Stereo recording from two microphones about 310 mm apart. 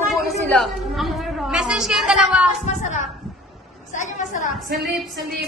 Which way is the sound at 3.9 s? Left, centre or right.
Left.